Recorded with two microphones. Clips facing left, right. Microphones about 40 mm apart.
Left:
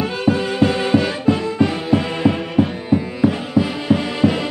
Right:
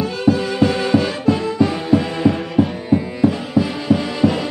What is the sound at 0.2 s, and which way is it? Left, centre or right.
Music, centre.